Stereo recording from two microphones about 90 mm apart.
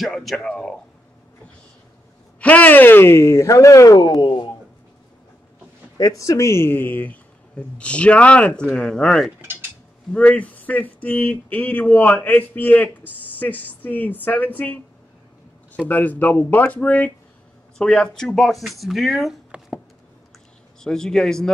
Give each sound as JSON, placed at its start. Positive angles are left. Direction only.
{"t": 0.0, "sound": "speech", "side_deg": 0}
{"t": 2.4, "sound": "speech", "side_deg": 15}
{"t": 4.0, "sound": "speech", "side_deg": 55}
{"t": 5.9, "sound": "speech", "side_deg": 40}
{"t": 19.5, "sound": "a sound", "side_deg": -15}
{"t": 20.8, "sound": "speech", "side_deg": 5}